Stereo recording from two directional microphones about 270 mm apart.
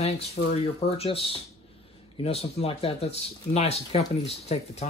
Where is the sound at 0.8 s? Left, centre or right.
Left.